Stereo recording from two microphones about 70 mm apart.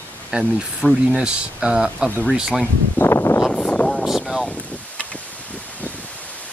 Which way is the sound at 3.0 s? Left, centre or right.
Left.